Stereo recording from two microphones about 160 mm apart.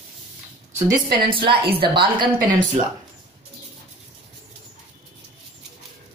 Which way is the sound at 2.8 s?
40° right (ahead or behind).